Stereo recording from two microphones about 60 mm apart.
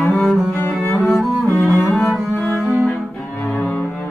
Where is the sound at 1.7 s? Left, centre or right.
Left.